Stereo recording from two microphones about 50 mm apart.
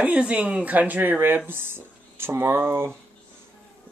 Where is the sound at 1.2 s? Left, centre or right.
Right.